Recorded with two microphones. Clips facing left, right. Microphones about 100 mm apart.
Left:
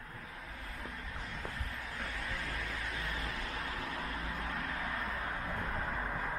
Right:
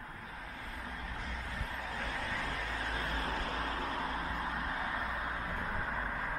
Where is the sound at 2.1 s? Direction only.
35° right (ahead or behind).